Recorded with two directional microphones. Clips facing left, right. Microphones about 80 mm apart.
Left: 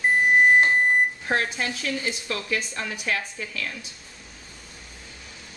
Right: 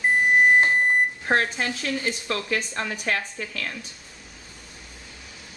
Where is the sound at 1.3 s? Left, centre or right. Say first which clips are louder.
Right 2 dB; right.